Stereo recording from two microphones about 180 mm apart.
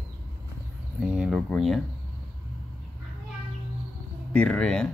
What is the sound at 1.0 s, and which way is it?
Speech, 5° right (ahead or behind).